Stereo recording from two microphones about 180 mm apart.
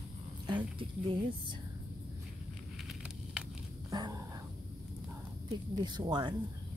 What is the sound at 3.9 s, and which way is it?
Whispering, 20° right (ahead or behind).